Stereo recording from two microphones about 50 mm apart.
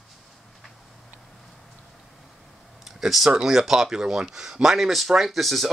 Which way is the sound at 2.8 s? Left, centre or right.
Centre.